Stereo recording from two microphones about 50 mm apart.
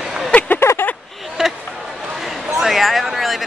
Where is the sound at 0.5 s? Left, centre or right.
Left.